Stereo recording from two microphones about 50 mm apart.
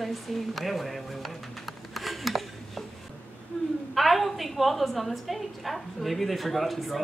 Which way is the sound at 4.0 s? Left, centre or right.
Centre.